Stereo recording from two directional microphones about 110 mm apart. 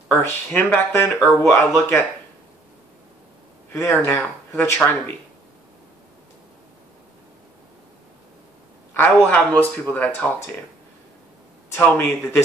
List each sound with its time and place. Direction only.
0.1 s a man's voice: 15° left (ahead or behind)
3.7 s speech: 20° left (ahead or behind)
8.9 s a man's voice: 20° left (ahead or behind)
11.7 s speech: 20° left (ahead or behind)